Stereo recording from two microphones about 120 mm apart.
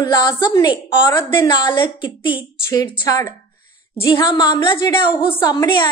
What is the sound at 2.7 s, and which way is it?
Speech, 30° left (ahead or behind).